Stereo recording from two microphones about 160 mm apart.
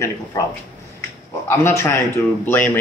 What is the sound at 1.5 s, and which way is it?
A man's voice, 15° left (ahead or behind).